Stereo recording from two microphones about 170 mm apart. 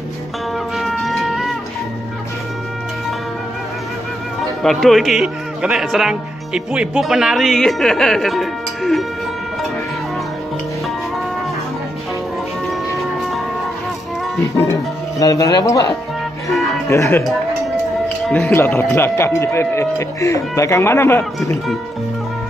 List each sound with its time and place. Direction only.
0.7 s music: centre (ahead or behind)
4.4 s speech: centre (ahead or behind)
15.1 s speech: 20° left (ahead or behind)
16.9 s speech: 15° left (ahead or behind)